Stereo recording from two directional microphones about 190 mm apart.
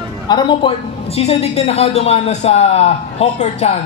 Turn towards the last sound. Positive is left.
turn(degrees=35)  # may be behind; listen again after turning